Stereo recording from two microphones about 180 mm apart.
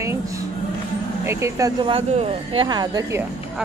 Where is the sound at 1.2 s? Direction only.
15° right (ahead or behind).